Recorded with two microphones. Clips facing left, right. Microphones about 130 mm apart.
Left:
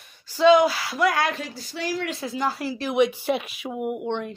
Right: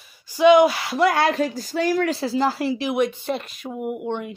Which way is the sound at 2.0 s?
30° right (ahead or behind).